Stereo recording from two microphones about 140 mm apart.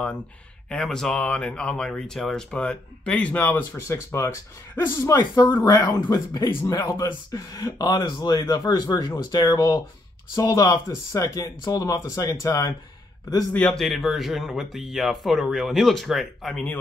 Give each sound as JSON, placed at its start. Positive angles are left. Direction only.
{"t": 0.7, "sound": "speech", "side_deg": 5}
{"t": 5.1, "sound": "speech", "side_deg": 30}
{"t": 5.5, "sound": "speech", "side_deg": 20}
{"t": 13.5, "sound": "speech", "side_deg": 5}